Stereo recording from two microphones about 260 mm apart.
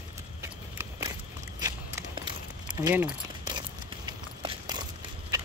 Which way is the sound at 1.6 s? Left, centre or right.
Centre.